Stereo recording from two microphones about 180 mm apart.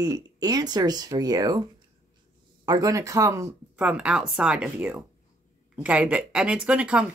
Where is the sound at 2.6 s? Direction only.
20° right (ahead or behind).